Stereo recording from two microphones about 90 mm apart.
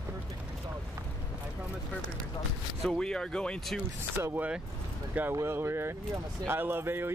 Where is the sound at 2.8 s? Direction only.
5° left (ahead or behind).